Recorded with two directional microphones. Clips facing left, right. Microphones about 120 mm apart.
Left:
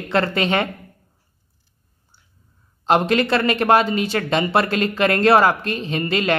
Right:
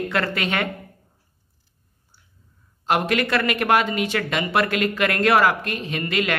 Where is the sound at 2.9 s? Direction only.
30° left (ahead or behind).